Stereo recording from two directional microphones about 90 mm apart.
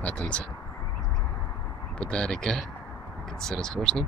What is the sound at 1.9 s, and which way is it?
Speech, 10° left (ahead or behind).